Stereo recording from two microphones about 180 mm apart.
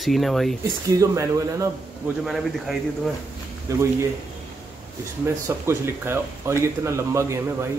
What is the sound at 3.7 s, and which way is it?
Speech, 20° right (ahead or behind).